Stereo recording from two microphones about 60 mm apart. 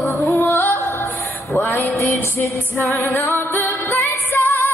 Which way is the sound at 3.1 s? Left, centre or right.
Left.